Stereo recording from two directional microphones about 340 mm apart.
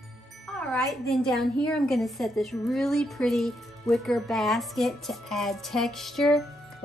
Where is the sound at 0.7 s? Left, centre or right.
Centre.